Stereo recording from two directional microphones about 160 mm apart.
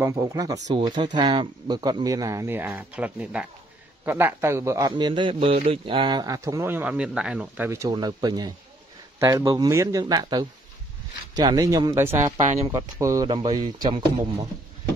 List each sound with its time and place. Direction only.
0.0 s a man's voice: 20° right (ahead or behind)
12.4 s speech: 50° right (ahead or behind)
12.6 s a man's voice: 20° right (ahead or behind)